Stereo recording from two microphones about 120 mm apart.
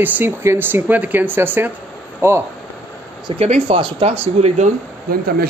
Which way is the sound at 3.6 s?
60° right (ahead or behind).